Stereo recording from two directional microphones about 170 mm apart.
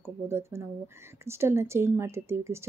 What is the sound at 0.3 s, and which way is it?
A woman's voice, 15° right (ahead or behind).